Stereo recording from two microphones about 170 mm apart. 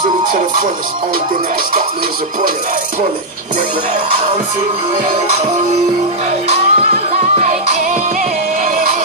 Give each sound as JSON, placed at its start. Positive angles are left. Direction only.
{"t": 6.5, "sound": "music", "side_deg": -45}